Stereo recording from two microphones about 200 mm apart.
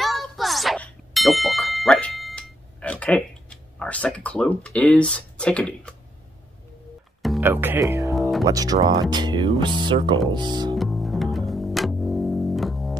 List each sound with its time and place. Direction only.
0.0 s ding: centre (ahead or behind)
7.2 s music: centre (ahead or behind)
7.4 s speech: 10° right (ahead or behind)
8.1 s music: centre (ahead or behind)
8.5 s speech: 20° right (ahead or behind)
10.8 s music: centre (ahead or behind)